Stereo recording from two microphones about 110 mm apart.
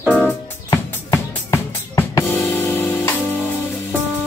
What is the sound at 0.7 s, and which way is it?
Drum, 30° left (ahead or behind).